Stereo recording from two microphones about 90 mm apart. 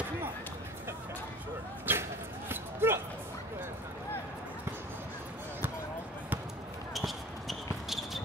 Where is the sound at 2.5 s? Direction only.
25° right (ahead or behind).